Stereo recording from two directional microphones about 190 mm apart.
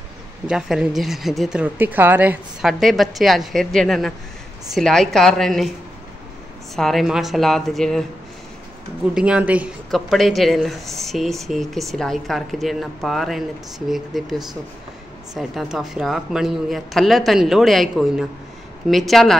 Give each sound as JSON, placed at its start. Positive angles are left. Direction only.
{"t": 0.5, "sound": "speech", "side_deg": -5}
{"t": 6.7, "sound": "speech", "side_deg": 0}
{"t": 9.1, "sound": "speech", "side_deg": -5}
{"t": 15.3, "sound": "speech", "side_deg": 0}